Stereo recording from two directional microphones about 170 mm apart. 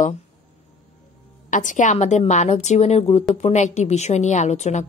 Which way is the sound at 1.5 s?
50° left (ahead or behind).